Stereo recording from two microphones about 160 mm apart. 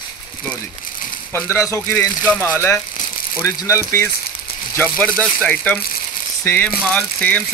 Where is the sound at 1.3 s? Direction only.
15° left (ahead or behind).